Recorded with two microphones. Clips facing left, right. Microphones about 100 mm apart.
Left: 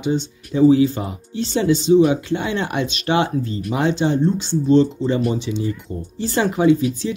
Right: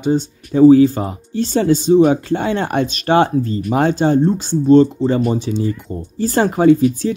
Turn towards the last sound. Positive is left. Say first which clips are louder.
# right 4 dB
turn(degrees=-45)  # may be behind; listen again after turning